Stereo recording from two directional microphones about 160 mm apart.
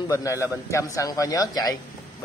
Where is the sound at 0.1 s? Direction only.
20° left (ahead or behind).